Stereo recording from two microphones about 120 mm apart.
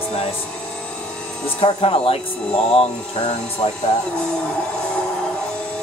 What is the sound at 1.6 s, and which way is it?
Speech, 50° left (ahead or behind).